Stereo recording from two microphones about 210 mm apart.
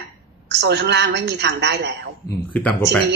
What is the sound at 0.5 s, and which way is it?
A woman's voice, 55° right (ahead or behind).